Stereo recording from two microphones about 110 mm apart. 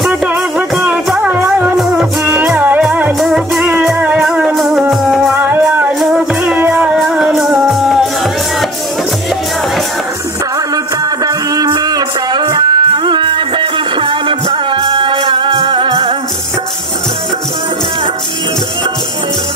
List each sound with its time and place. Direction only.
0.4 s music: 5° right (ahead or behind)
1.2 s music: 15° right (ahead or behind)
5.3 s music: 15° right (ahead or behind)
11.2 s music: 35° right (ahead or behind); by 16.2 s 55° right (ahead or behind)